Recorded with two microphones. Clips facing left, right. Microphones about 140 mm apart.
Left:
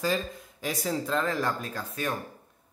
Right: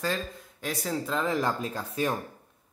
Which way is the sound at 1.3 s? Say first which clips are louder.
Right 2 dB; 20° right (ahead or behind).